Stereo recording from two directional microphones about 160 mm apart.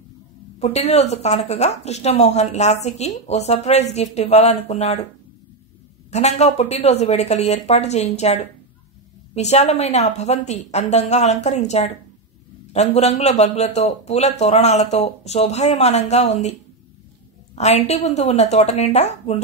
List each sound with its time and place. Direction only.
0.6 s speech: 45° left (ahead or behind)
6.0 s speech: 45° left (ahead or behind)
17.6 s speech: 40° left (ahead or behind)